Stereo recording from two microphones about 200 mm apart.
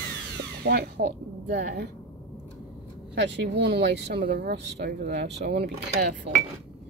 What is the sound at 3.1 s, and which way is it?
Speech, 60° right (ahead or behind).